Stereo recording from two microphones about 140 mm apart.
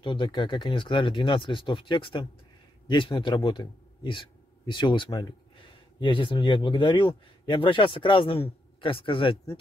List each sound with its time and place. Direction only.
0.0 s a man's voice: 35° left (ahead or behind)